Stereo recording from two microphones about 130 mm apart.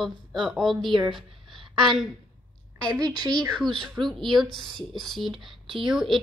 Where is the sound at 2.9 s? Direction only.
30° right (ahead or behind).